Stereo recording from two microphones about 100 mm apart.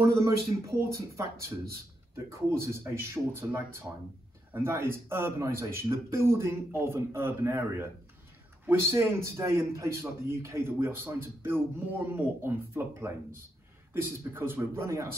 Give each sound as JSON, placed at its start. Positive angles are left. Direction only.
{"t": 0.0, "sound": "a man's voice", "side_deg": -30}
{"t": 4.5, "sound": "a man's voice", "side_deg": -25}